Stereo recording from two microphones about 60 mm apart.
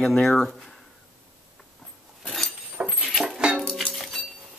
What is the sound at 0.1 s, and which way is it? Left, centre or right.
Speech, centre.